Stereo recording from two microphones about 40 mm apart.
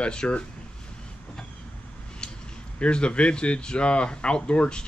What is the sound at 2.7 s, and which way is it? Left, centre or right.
Speech, left.